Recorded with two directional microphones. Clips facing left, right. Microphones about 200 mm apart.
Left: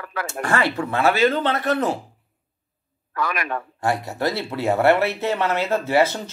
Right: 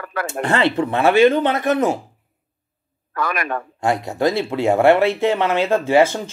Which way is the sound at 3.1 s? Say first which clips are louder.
Right 2 dB; 50° right (ahead or behind).